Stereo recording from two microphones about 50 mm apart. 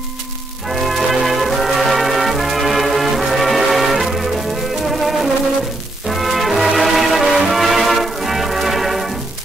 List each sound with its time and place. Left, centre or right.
0.7 s brass instrument: centre
4.8 s music: centre